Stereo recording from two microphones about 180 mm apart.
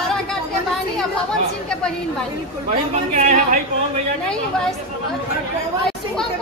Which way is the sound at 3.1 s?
45° right (ahead or behind).